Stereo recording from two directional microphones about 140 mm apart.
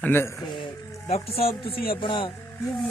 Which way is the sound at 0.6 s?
45° left (ahead or behind).